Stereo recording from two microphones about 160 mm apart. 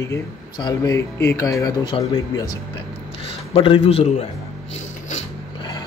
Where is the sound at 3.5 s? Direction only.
35° left (ahead or behind).